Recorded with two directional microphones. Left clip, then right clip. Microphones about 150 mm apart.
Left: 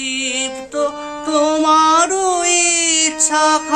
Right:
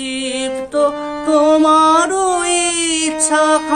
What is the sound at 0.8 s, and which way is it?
Music, 10° left (ahead or behind).